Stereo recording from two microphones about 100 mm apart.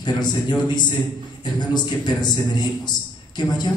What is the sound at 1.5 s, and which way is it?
A man's voice, 45° left (ahead or behind).